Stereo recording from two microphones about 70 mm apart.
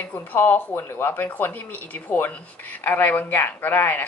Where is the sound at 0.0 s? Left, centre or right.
Left.